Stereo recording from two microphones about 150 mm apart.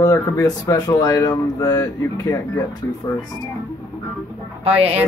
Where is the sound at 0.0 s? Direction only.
20° left (ahead or behind).